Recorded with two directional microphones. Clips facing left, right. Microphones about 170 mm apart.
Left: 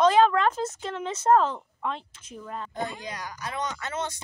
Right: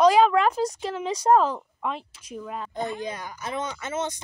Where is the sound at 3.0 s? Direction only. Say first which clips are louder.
Right 3 dB; 25° right (ahead or behind).